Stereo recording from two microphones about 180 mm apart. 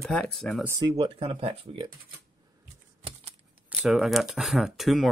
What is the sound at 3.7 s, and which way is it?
Speech, 5° right (ahead or behind).